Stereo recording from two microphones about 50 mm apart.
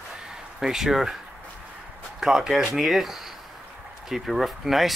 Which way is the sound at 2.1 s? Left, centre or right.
Centre.